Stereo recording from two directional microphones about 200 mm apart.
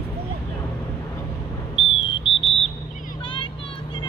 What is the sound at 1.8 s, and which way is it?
Whistle, 25° left (ahead or behind).